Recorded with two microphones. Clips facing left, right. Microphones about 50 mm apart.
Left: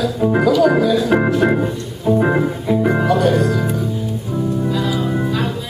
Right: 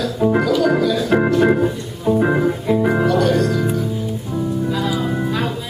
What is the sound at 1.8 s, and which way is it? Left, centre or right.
Music, centre.